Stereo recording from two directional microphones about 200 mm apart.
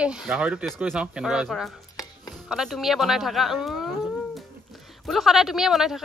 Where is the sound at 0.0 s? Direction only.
5° right (ahead or behind).